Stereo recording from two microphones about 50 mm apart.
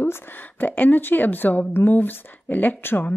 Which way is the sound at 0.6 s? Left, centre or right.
Left.